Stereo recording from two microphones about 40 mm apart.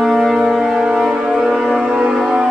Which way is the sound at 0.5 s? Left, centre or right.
Centre.